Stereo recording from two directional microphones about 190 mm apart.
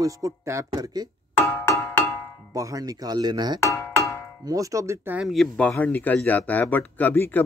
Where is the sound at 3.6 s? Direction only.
15° left (ahead or behind).